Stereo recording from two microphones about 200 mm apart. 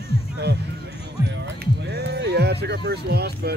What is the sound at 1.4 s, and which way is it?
Speech, 55° right (ahead or behind).